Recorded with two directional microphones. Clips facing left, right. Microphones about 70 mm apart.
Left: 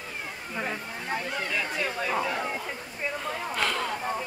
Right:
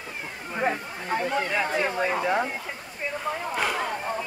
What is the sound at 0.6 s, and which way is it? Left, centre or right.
Speech, right.